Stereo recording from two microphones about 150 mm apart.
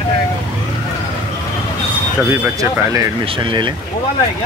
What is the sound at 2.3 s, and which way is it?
Speech, 20° right (ahead or behind).